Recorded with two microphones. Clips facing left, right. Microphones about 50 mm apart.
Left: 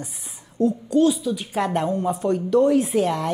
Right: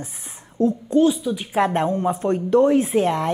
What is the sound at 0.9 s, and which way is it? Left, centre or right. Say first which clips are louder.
Speech: right 1 dB; centre.